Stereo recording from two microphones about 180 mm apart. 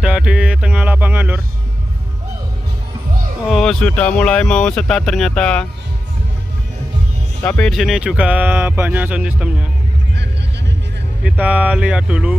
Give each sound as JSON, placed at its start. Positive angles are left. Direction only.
{"t": 0.0, "sound": "speech", "side_deg": -5}
{"t": 3.4, "sound": "speech", "side_deg": 0}
{"t": 7.4, "sound": "speech", "side_deg": 5}
{"t": 10.1, "sound": "a sound", "side_deg": -70}
{"t": 11.2, "sound": "speech", "side_deg": -5}